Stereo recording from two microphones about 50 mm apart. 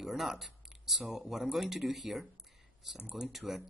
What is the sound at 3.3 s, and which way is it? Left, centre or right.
Speech, centre.